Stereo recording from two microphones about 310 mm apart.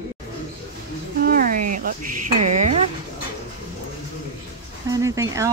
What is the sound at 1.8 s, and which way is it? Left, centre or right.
Speech, right.